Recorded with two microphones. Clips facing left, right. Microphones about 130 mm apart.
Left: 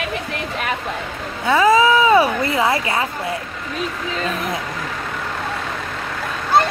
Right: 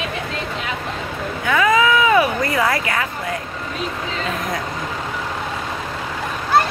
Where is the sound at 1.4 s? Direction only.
30° left (ahead or behind).